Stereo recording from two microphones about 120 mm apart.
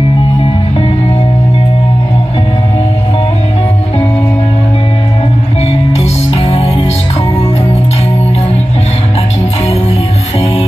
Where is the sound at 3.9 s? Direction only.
15° left (ahead or behind).